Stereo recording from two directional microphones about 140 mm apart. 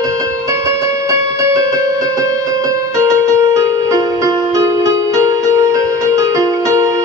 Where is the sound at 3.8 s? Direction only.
25° right (ahead or behind).